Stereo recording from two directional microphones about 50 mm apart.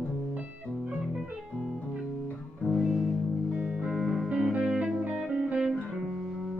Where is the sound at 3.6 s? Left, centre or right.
Right.